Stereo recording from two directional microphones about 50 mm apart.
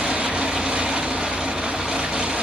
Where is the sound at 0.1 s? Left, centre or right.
Centre.